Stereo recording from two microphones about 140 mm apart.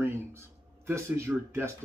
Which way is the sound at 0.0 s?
15° right (ahead or behind).